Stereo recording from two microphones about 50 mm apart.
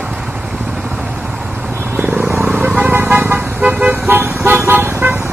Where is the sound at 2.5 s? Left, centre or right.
Right.